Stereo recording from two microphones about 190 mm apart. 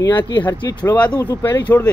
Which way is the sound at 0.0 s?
20° left (ahead or behind).